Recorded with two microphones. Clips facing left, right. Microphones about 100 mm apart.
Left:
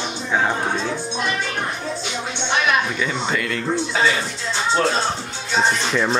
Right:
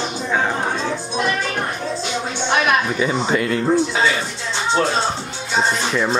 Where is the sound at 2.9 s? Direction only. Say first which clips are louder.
Right 4 dB; 25° right (ahead or behind).